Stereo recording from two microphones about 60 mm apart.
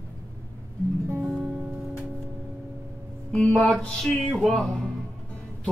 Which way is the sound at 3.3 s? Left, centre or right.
Centre.